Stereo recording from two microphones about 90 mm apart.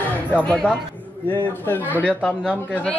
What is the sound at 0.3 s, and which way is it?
A woman's voice, 15° left (ahead or behind).